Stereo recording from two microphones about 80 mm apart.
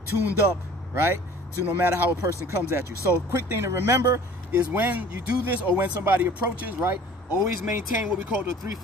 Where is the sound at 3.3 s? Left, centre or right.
Right.